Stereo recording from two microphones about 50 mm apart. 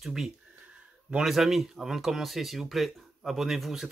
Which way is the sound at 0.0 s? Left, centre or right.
Centre.